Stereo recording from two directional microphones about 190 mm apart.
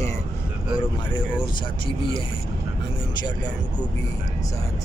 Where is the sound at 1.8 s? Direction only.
25° left (ahead or behind).